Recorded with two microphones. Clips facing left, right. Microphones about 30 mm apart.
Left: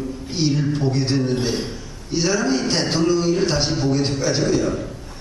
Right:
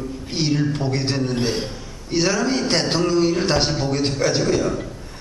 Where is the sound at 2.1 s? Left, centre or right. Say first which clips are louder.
Even; right.